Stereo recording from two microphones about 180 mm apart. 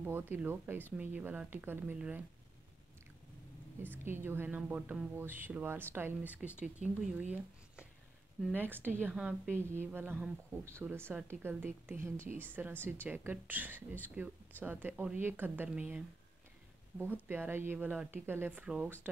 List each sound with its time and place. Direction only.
0.0 s speech: 10° right (ahead or behind)
3.9 s speech: 10° right (ahead or behind)
17.0 s speech: 10° right (ahead or behind)